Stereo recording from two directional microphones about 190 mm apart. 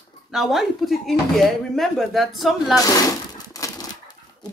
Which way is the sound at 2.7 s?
20° left (ahead or behind).